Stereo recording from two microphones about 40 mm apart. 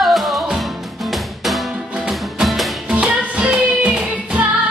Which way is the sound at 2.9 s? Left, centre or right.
Right.